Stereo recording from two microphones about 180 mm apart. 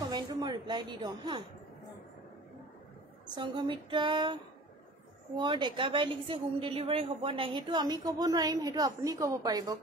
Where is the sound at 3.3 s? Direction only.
25° right (ahead or behind).